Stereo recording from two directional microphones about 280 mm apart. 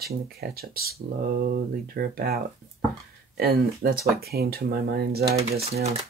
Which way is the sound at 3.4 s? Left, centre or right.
Right.